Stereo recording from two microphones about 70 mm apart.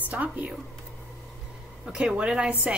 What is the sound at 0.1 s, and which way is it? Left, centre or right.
Speech, right.